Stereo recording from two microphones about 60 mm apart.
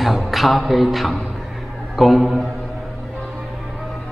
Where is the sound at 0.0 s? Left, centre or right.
Centre.